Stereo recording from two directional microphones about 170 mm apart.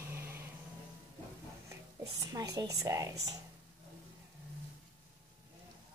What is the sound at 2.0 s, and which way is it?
A woman's voice, 20° right (ahead or behind).